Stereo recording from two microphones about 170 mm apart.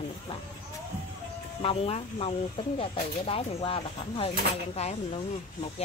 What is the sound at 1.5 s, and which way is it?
Speech, 30° left (ahead or behind).